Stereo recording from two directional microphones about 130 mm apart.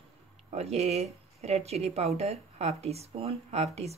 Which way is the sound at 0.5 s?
55° right (ahead or behind).